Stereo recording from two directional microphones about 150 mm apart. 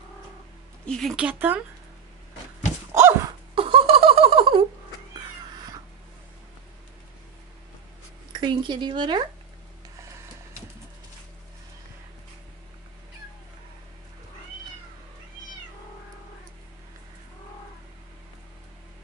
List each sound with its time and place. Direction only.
0.8 s speech: 5° left (ahead or behind)
2.9 s a sound: 15° right (ahead or behind)
3.5 s laughter: 40° right (ahead or behind)
8.4 s speech: 30° right (ahead or behind)